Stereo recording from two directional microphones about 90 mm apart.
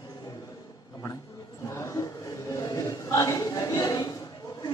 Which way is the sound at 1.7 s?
30° left (ahead or behind).